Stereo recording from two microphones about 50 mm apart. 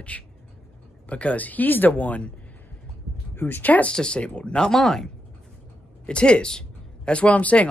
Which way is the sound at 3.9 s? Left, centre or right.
Centre.